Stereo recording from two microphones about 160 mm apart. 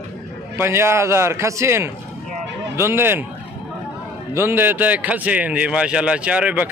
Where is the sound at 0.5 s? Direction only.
15° right (ahead or behind).